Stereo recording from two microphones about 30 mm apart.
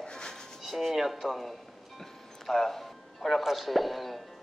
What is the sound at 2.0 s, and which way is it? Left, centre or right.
Music, centre.